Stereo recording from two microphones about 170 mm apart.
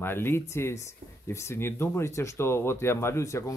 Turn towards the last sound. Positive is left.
turn(degrees=15)  # may be behind; listen again after turning